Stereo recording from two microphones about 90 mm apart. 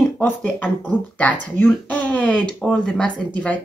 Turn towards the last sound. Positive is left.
turn(degrees=15)  # may be behind; listen again after turning